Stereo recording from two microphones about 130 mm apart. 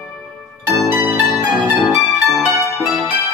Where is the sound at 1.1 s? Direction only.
15° right (ahead or behind).